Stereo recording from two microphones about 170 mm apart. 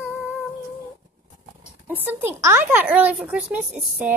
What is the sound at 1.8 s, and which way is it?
Speech, 10° right (ahead or behind).